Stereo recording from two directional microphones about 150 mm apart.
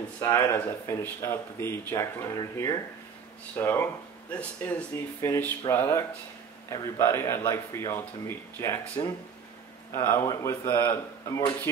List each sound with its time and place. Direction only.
0.2 s speech: 20° left (ahead or behind)